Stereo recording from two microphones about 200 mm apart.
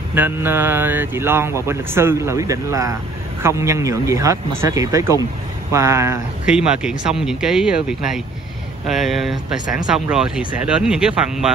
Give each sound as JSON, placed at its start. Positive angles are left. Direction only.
{"t": 0.1, "sound": "speech", "side_deg": -10}
{"t": 6.4, "sound": "speech", "side_deg": -5}
{"t": 8.8, "sound": "speech", "side_deg": 0}